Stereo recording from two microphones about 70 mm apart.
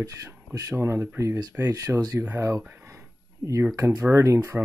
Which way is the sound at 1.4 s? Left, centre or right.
Right.